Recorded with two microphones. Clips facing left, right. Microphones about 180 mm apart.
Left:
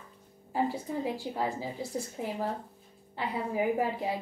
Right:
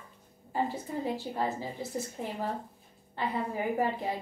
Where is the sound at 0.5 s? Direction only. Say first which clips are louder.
Left 2 dB; 10° left (ahead or behind).